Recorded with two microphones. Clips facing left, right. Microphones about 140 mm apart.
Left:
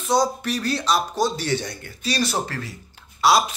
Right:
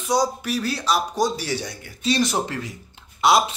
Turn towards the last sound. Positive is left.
turn(degrees=-20)  # may be behind; listen again after turning